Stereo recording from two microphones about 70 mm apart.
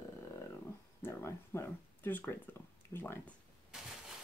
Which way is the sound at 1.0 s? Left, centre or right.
Left.